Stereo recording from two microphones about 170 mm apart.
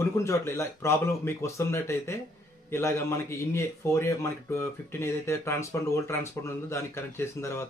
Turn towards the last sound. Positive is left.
turn(degrees=15)  # may be behind; listen again after turning